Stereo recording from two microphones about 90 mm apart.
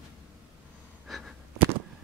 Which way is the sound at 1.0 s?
Centre (ahead or behind).